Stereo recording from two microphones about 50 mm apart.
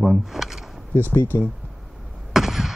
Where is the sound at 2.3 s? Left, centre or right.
Centre.